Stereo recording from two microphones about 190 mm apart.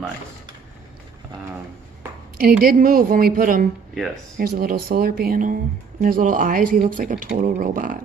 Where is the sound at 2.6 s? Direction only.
50° right (ahead or behind).